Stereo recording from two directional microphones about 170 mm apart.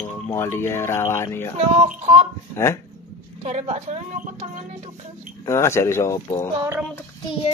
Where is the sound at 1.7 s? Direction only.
45° right (ahead or behind).